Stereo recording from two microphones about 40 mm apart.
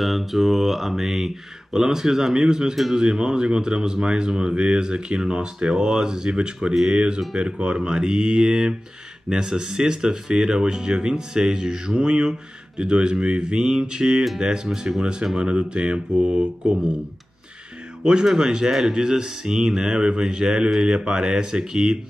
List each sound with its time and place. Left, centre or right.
0.0 s speech: centre
2.7 s a man's voice: centre
7.5 s speech: right
18.0 s speech: centre